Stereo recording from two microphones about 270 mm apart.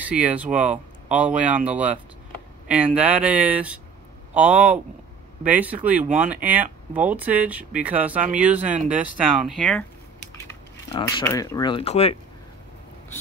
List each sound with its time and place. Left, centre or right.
0.0 s speech: centre
8.6 s speech: right
9.2 s speech: centre
10.9 s speech: centre